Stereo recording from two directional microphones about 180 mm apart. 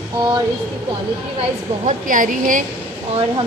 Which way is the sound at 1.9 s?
45° right (ahead or behind).